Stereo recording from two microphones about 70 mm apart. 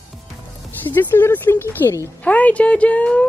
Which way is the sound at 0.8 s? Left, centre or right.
Left.